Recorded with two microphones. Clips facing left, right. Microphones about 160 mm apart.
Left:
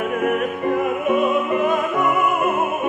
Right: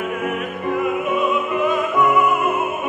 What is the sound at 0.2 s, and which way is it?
Music, 50° left (ahead or behind).